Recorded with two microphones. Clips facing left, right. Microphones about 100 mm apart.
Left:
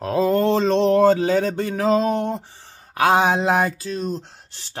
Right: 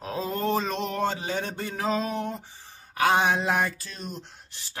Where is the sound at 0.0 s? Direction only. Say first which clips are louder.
Left 10 dB; 70° left (ahead or behind).